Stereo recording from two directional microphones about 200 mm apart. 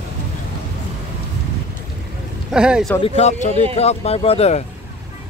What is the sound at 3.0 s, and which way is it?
Speech, 30° left (ahead or behind).